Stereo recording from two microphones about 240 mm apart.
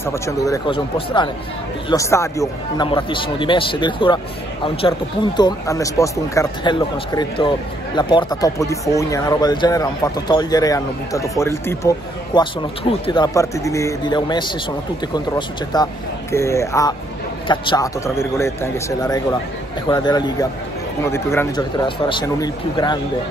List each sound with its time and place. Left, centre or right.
0.0 s speech: centre